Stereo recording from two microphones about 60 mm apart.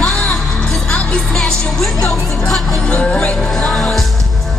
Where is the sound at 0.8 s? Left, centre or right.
Left.